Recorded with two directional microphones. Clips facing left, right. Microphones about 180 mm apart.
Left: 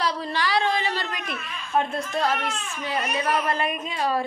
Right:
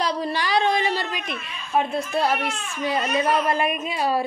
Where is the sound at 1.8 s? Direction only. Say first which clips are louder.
Right 2 dB; 10° right (ahead or behind).